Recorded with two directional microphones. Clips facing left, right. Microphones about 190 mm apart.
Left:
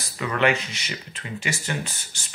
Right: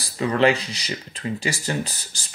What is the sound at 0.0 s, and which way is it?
Speech, 30° right (ahead or behind).